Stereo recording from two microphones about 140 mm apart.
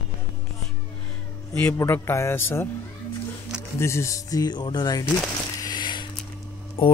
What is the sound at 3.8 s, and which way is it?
Speech, 20° left (ahead or behind).